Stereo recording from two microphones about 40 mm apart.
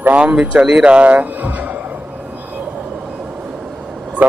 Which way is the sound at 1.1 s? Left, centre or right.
Right.